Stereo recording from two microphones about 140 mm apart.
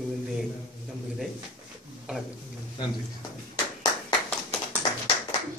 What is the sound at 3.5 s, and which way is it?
Clapping, 25° left (ahead or behind).